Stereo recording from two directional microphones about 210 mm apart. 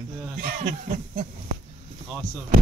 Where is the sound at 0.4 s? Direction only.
40° right (ahead or behind).